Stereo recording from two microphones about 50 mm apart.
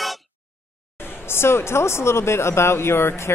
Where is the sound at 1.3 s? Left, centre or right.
Left.